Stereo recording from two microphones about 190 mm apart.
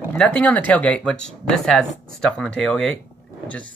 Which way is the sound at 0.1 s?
10° left (ahead or behind).